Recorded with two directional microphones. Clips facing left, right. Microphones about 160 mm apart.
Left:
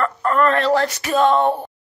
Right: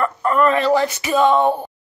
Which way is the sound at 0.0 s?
10° right (ahead or behind).